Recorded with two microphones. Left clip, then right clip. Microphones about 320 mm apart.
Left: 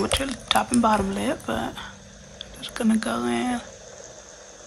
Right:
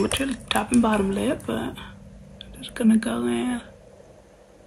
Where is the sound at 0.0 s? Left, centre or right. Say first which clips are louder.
Even; centre.